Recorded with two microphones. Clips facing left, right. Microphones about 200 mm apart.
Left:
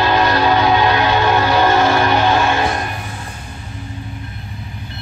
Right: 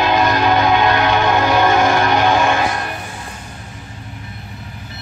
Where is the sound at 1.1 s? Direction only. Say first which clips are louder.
Even; 15° right (ahead or behind).